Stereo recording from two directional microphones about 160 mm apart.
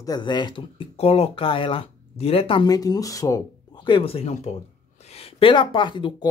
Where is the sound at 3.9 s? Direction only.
35° left (ahead or behind).